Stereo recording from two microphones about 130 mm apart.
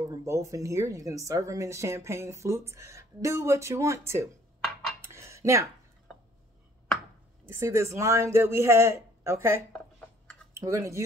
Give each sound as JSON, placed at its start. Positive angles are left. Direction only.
{"t": 0.1, "sound": "speech", "side_deg": -25}
{"t": 5.0, "sound": "tick-tock", "side_deg": -20}
{"t": 7.4, "sound": "speech", "side_deg": -20}
{"t": 9.7, "sound": "a sound", "side_deg": 5}
{"t": 10.5, "sound": "speech", "side_deg": -25}